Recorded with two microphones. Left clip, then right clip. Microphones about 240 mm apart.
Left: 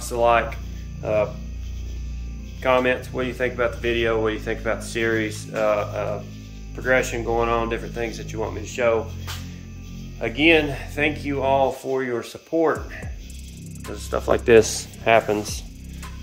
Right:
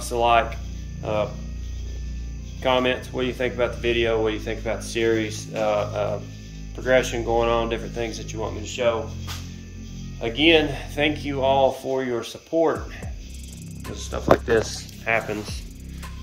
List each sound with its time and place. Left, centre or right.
0.0 s speech: centre
2.6 s speech: centre
10.2 s speech: centre
14.4 s speech: left
15.0 s speech: left